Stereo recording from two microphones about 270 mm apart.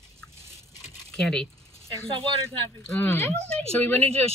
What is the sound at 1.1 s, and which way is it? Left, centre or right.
Speech, centre.